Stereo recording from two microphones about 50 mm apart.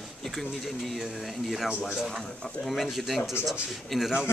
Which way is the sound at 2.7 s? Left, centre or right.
Centre.